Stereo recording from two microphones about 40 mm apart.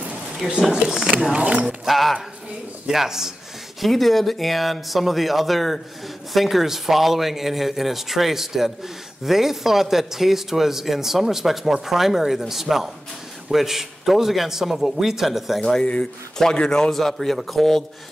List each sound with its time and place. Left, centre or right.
0.5 s speech: centre
1.3 s speech: right
1.9 s speech: centre
3.8 s speech: centre
15.8 s a man's voice: left; by 17.8 s centre